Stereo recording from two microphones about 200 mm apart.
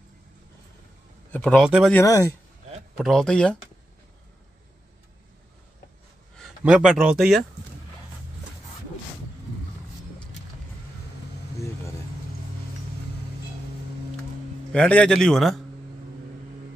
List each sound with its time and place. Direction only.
1.3 s a man's voice: 5° left (ahead or behind)
2.0 s speech: 15° left (ahead or behind)
3.0 s a man's voice: 5° left (ahead or behind)
6.3 s speech: centre (ahead or behind)
14.7 s a man's voice: 5° left (ahead or behind)